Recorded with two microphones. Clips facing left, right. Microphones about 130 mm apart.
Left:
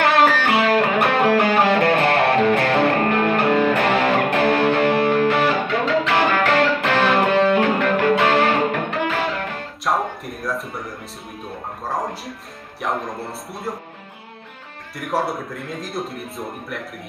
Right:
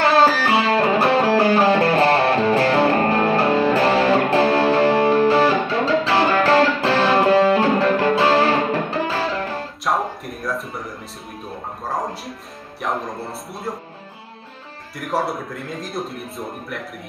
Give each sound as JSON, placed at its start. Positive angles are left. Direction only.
{"t": 0.0, "sound": "music", "side_deg": -35}
{"t": 9.8, "sound": "a sound", "side_deg": 0}
{"t": 11.8, "sound": "a man's voice", "side_deg": 0}
{"t": 15.0, "sound": "a man's voice", "side_deg": 0}